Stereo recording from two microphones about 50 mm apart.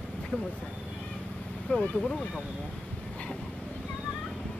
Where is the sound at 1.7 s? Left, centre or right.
Left.